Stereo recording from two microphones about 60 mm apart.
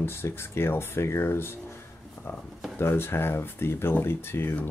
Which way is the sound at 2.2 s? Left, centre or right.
Left.